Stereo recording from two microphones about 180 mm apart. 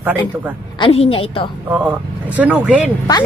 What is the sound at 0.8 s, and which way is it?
Speech, 30° left (ahead or behind).